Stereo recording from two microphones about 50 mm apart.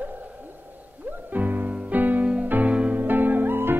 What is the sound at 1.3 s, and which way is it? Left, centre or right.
Music, right.